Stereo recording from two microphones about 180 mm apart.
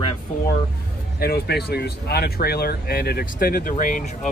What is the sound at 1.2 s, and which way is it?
Speech, 60° left (ahead or behind).